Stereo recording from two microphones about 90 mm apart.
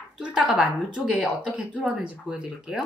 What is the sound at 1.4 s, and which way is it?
Speech, 10° right (ahead or behind).